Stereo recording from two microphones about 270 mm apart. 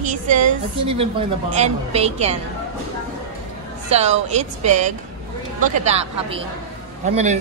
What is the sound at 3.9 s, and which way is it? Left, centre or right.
A woman's voice, right.